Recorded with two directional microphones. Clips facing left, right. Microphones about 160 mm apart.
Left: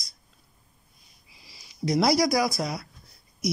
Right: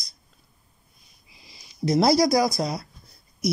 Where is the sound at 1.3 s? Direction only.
20° right (ahead or behind).